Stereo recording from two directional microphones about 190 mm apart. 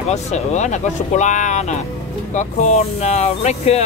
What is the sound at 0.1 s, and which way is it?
Speech, 35° left (ahead or behind).